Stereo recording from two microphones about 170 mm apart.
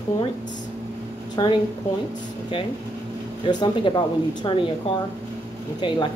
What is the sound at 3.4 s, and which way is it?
Speech, 25° left (ahead or behind).